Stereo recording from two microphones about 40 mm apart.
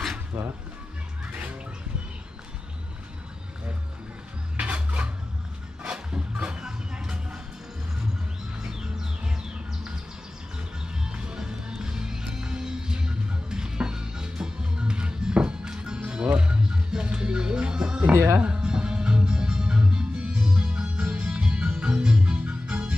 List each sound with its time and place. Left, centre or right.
0.3 s speech: right
1.2 s a sound: right
4.6 s a sound: right
5.8 s music: right
8.5 s bird: centre
11.1 s music: centre